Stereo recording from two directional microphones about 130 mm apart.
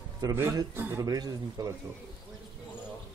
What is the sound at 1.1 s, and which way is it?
Speech, 30° right (ahead or behind).